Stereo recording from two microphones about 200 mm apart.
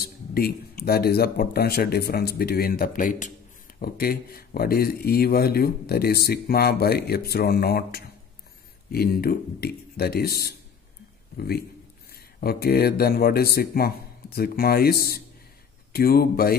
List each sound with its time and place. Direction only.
0.0 s speech: 50° left (ahead or behind)